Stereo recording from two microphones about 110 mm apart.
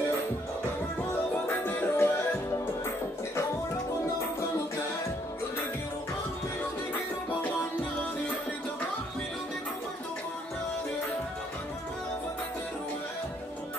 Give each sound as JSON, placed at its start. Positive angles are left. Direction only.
{"t": 1.8, "sound": "music", "side_deg": 20}